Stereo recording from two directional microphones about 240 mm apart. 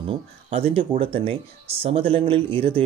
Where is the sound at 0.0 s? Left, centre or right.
Right.